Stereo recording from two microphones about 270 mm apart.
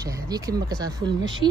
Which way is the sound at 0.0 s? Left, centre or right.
Centre.